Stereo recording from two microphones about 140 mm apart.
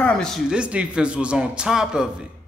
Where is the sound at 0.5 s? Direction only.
10° right (ahead or behind).